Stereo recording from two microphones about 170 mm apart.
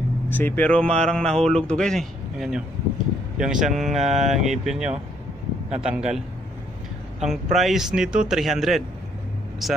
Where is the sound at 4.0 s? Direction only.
40° right (ahead or behind).